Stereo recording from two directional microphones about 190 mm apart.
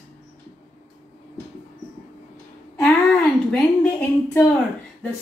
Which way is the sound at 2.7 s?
10° left (ahead or behind).